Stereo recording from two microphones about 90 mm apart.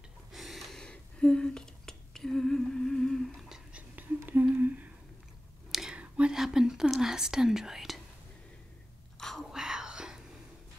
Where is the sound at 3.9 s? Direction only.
20° right (ahead or behind).